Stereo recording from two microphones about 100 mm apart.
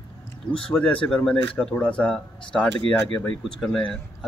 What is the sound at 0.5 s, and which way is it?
Speech, 10° left (ahead or behind).